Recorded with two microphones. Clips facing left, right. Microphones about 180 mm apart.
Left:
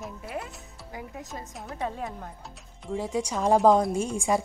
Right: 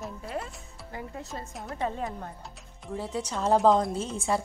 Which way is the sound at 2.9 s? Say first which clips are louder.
Left 4 dB; 10° left (ahead or behind).